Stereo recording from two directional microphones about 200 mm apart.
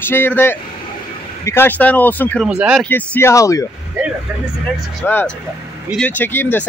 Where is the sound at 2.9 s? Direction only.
10° left (ahead or behind).